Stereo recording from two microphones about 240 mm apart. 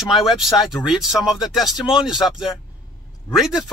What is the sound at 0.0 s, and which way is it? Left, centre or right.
A man's voice, centre.